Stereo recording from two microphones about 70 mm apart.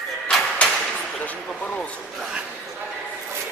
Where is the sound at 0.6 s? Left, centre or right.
Centre.